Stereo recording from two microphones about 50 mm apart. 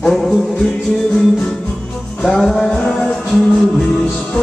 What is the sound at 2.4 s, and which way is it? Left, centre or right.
Music, centre.